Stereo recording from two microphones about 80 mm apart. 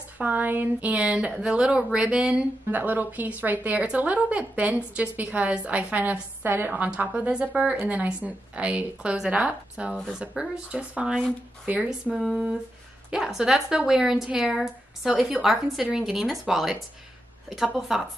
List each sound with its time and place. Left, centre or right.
0.2 s a woman's voice: right; by 16.7 s centre
17.7 s speech: centre